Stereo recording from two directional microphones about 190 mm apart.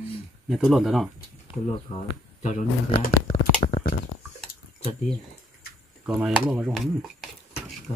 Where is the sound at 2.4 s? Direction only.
45° left (ahead or behind).